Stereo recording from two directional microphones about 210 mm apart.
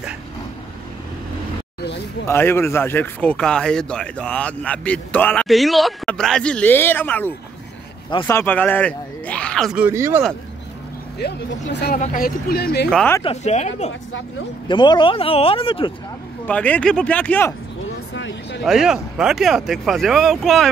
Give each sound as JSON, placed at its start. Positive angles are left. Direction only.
{"t": 2.2, "sound": "speech", "side_deg": 10}
{"t": 11.6, "sound": "speech", "side_deg": 40}
{"t": 12.9, "sound": "speech", "side_deg": 5}
{"t": 13.2, "sound": "speech", "side_deg": 30}
{"t": 14.7, "sound": "speech", "side_deg": 20}
{"t": 16.4, "sound": "speech", "side_deg": 5}
{"t": 18.1, "sound": "a sound", "side_deg": 60}
{"t": 18.6, "sound": "speech", "side_deg": 0}